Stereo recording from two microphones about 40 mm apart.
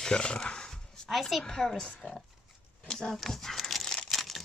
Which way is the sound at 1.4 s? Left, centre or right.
Centre.